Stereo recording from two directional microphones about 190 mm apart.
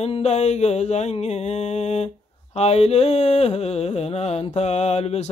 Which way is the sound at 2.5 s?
35° left (ahead or behind).